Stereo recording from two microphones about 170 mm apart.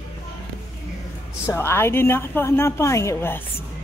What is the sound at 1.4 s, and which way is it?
A woman's voice, 15° left (ahead or behind).